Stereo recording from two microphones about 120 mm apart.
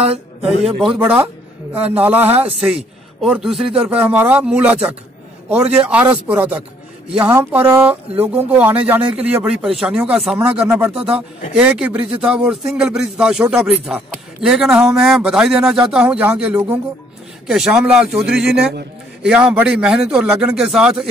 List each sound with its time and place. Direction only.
0.4 s speech: centre (ahead or behind)
2.6 s a man's voice: centre (ahead or behind)
4.0 s speech: 15° right (ahead or behind)